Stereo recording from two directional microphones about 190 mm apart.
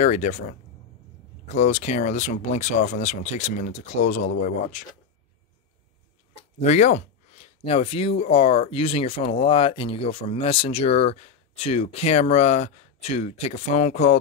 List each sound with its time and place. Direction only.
0.0 s speech: 35° left (ahead or behind)
1.6 s speech: 35° left (ahead or behind)
6.6 s speech: 35° left (ahead or behind)